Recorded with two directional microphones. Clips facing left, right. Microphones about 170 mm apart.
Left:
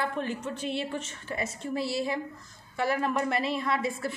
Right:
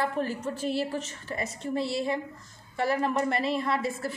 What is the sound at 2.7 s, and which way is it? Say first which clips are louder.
Speech: right 1 dB; 30° right (ahead or behind).